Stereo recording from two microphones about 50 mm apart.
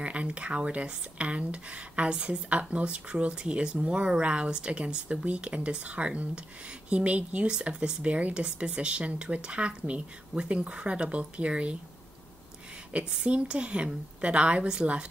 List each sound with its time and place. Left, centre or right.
0.0 s speech: right
13.2 s speech: right